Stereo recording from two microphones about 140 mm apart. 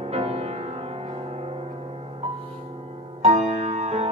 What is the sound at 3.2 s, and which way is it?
Music, 45° right (ahead or behind).